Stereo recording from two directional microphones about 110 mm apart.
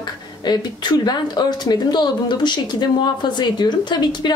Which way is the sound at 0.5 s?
40° left (ahead or behind).